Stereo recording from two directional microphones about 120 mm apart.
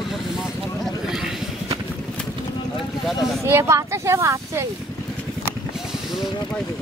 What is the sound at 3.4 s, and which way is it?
Speech, 20° right (ahead or behind).